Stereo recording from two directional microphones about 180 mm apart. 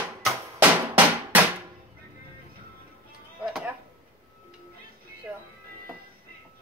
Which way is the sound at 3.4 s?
5° right (ahead or behind).